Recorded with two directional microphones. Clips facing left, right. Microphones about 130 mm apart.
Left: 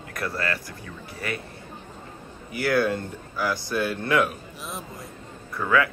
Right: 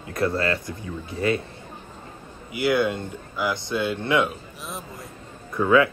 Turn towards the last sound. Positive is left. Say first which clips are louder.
# right 5 dB
turn(degrees=-20)  # may be behind; listen again after turning